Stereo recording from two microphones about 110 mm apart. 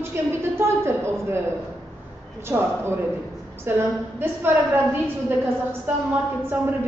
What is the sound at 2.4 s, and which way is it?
A woman's voice, 20° right (ahead or behind).